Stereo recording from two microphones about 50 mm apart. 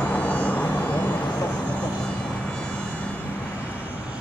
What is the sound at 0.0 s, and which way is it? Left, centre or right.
Vehicle, left.